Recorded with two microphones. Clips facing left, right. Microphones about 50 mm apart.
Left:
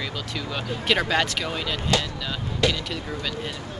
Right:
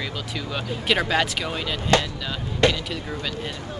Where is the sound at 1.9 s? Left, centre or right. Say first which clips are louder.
Right 6 dB; right.